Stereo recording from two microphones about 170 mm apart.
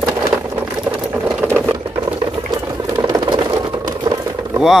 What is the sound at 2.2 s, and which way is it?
Sewing machine, 30° right (ahead or behind).